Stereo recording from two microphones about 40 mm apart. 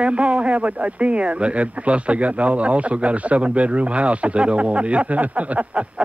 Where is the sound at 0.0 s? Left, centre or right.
Right.